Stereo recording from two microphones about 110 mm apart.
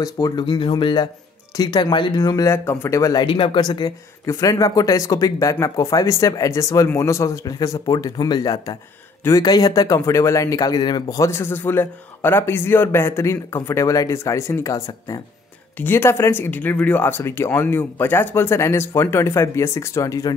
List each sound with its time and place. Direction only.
0.0 s speech: 40° left (ahead or behind)
1.6 s speech: 40° left (ahead or behind)
3.3 s speech: 50° left (ahead or behind)
4.3 s speech: 30° left (ahead or behind)
15.8 s speech: 20° left (ahead or behind)